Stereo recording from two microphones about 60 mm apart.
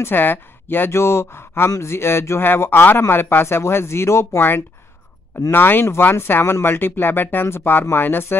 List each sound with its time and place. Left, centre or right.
0.0 s speech: left
5.5 s speech: left